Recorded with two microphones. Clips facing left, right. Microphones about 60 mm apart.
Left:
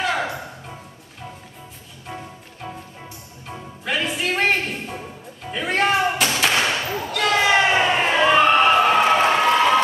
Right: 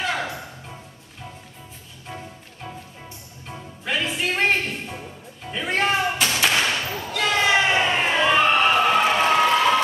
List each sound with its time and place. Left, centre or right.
0.0 s music: centre
2.0 s music: centre
7.1 s crowd: centre